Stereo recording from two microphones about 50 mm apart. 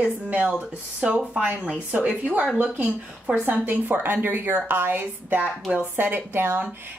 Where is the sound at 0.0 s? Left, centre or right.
Right.